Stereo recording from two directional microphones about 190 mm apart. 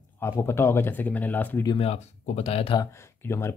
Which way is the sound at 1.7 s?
30° left (ahead or behind).